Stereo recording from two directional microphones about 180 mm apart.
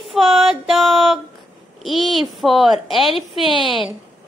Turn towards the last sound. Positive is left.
turn(degrees=0)  # may be behind; listen again after turning